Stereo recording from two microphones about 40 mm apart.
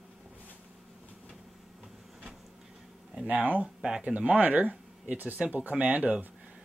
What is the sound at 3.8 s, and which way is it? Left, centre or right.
Speech, right.